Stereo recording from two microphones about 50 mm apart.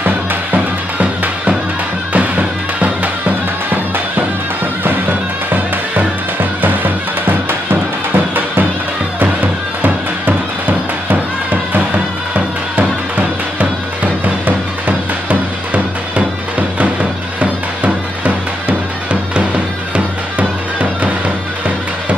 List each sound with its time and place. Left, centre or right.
0.0 s music: right
6.6 s music: right
14.2 s music: right
17.4 s music: right